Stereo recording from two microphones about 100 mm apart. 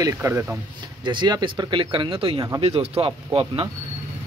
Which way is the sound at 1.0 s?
50° right (ahead or behind).